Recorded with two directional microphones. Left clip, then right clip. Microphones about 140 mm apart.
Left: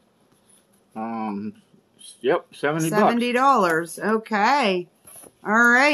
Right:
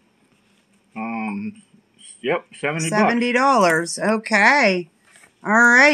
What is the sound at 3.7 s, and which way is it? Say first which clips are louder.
A woman's voice: right 3 dB; 40° right (ahead or behind).